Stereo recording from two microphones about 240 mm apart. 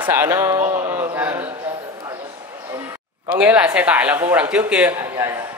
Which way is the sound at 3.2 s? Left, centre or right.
Centre.